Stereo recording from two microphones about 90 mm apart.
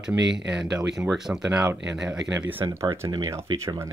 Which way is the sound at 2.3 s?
20° right (ahead or behind).